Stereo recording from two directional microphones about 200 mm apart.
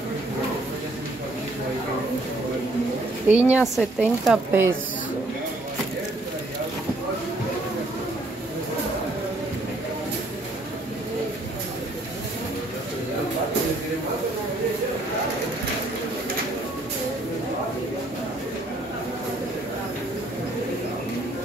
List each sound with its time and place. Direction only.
3.3 s a woman's voice: 10° right (ahead or behind)